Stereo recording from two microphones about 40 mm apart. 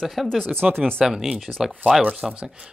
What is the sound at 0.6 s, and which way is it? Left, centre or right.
Speech, right.